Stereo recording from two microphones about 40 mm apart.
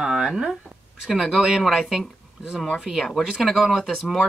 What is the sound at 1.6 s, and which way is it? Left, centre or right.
Speech, centre.